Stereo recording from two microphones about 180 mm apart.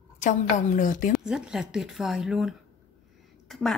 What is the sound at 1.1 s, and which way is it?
A woman's voice, 5° right (ahead or behind).